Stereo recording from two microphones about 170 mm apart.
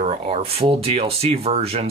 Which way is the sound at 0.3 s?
35° right (ahead or behind).